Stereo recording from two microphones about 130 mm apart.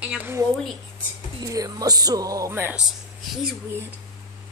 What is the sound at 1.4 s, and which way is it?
Speech, 25° right (ahead or behind).